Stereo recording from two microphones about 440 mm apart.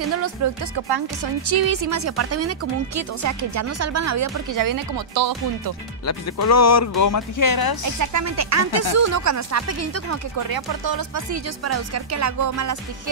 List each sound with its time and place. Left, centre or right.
0.7 s speech: right
6.0 s speech: left
7.8 s speech: right
10.5 s speech: right
11.6 s speech: right